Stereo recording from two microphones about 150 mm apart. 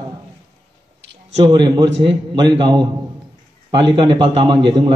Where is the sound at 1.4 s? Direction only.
30° right (ahead or behind).